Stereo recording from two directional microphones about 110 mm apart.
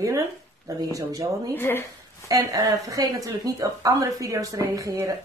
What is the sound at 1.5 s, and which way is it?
Speech, 20° left (ahead or behind).